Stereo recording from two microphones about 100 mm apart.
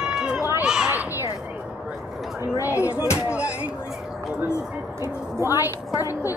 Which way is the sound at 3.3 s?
15° right (ahead or behind).